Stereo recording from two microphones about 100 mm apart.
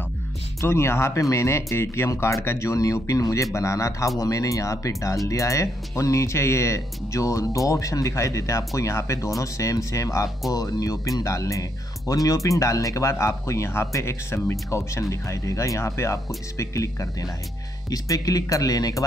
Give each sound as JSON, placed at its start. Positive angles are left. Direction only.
{"t": 0.6, "sound": "speech", "side_deg": 25}